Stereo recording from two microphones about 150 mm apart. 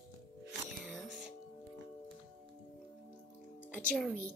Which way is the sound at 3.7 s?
5° left (ahead or behind).